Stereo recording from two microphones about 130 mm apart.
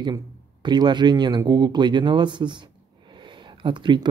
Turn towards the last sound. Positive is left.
turn(degrees=-40)  # may be behind; listen again after turning